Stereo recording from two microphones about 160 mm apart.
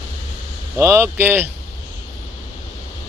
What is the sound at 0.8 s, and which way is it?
Speech, 15° right (ahead or behind).